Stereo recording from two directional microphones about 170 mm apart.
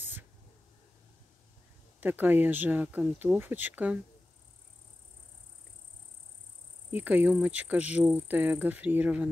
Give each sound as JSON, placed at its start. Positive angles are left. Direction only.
{"t": 2.0, "sound": "cricket", "side_deg": -10}
{"t": 6.9, "sound": "cricket", "side_deg": -10}